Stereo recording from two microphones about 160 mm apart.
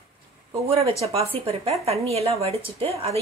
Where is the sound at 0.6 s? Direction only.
40° right (ahead or behind).